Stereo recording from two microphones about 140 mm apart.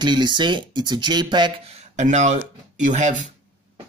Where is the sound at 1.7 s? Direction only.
55° right (ahead or behind).